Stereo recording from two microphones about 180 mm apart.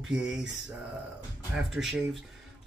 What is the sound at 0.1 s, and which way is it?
Speech, 5° right (ahead or behind).